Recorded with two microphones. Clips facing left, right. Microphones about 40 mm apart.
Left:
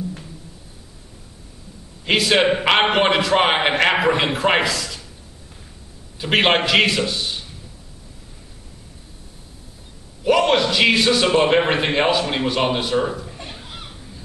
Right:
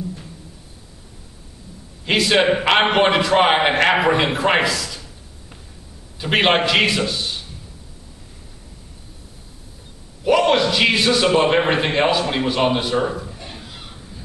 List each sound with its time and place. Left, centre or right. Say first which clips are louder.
2.0 s a man's voice: even; centre
6.1 s a man's voice: even; centre
10.2 s a man's voice: right 1 dB; centre
13.4 s a sound: left 1 dB; left